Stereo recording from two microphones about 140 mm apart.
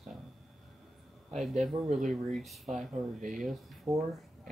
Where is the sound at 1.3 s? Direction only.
Centre (ahead or behind).